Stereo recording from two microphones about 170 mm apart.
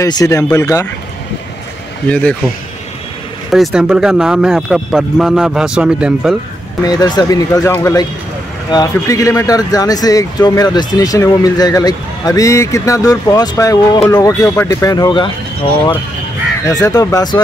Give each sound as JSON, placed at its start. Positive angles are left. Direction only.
{"t": 0.0, "sound": "speech", "side_deg": 20}
{"t": 2.0, "sound": "a man's voice", "side_deg": 10}
{"t": 3.5, "sound": "speech", "side_deg": 0}
{"t": 6.8, "sound": "speech", "side_deg": 25}
{"t": 16.6, "sound": "speech", "side_deg": 20}